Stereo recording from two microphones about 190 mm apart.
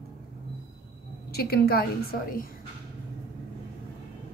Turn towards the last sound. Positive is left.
turn(degrees=55)  # may be behind; listen again after turning